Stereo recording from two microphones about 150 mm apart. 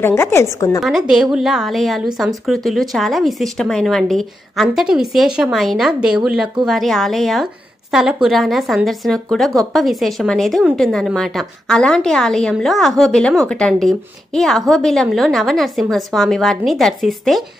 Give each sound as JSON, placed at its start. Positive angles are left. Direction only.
{"t": 0.0, "sound": "a woman's voice", "side_deg": 15}
{"t": 0.7, "sound": "a woman's voice", "side_deg": 0}